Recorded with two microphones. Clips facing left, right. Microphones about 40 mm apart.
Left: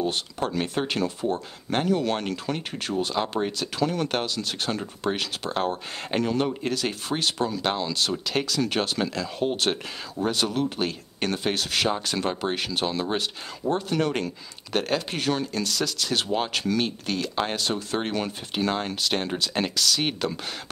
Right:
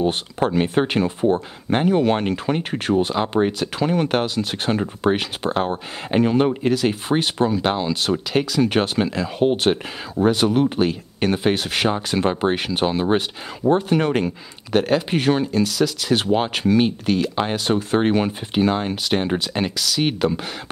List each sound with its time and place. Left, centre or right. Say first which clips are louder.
0.0 s speech: right 6 dB; right
6.6 s speech: right 8 dB; centre
8.6 s speech: right 6 dB; right
10.8 s speech: right 7 dB; centre
16.2 s speech: right 4 dB; right
19.5 s speech: right 2 dB; centre